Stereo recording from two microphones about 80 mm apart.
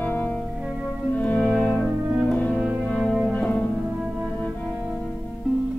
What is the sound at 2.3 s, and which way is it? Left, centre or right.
Music, centre.